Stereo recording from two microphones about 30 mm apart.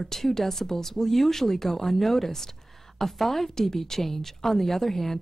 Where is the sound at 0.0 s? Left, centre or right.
Centre.